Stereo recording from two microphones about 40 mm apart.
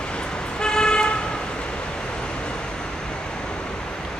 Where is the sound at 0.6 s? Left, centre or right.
Centre.